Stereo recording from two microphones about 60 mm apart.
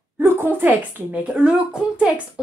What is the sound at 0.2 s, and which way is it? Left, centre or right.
Speech, right.